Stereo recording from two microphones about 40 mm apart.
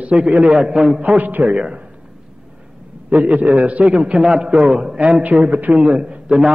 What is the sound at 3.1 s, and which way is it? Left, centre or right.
A man's voice, right.